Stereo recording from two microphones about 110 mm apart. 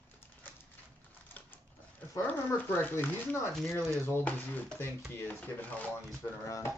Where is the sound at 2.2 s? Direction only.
15° left (ahead or behind).